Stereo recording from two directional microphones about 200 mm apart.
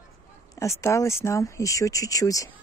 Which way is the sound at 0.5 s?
15° left (ahead or behind).